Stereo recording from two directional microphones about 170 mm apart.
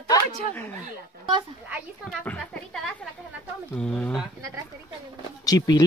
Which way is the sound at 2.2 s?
5° left (ahead or behind).